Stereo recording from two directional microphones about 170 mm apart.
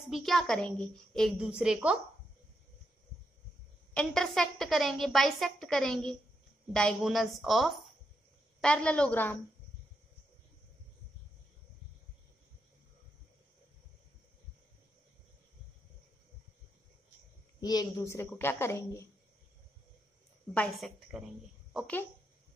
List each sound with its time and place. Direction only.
0.0 s a woman's voice: centre (ahead or behind)
3.9 s a woman's voice: 5° left (ahead or behind)
17.6 s a woman's voice: 25° left (ahead or behind)
20.5 s a woman's voice: 5° left (ahead or behind)